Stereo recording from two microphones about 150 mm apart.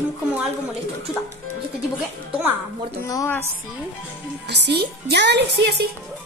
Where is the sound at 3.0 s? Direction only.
25° left (ahead or behind).